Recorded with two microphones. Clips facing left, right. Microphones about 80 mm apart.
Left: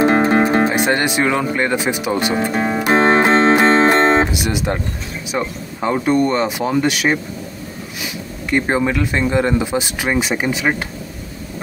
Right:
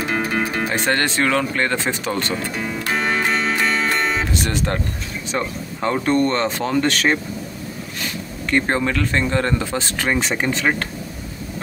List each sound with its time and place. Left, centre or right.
0.0 s speech: left; by 2.3 s centre
2.5 s music: left
4.3 s speech: centre